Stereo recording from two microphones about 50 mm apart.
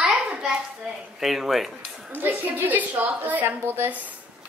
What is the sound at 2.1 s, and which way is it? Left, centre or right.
A woman's voice, right.